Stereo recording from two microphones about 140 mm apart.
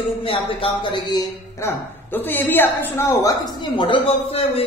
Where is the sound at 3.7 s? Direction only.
35° left (ahead or behind).